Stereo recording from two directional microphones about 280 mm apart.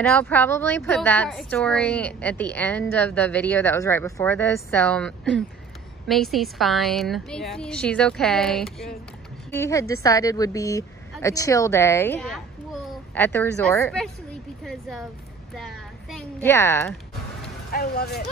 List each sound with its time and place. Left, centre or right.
0.0 s a woman's voice: centre
17.6 s speech: left